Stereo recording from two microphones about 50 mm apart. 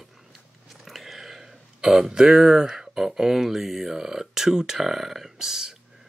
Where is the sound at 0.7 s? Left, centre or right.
Centre.